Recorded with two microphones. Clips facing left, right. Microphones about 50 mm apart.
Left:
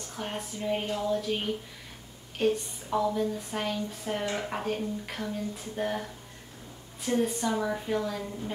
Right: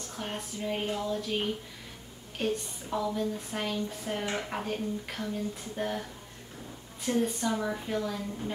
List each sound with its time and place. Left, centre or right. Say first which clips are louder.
0.1 s a woman's voice: left 2 dB; centre
7.1 s a woman's voice: left 1 dB; centre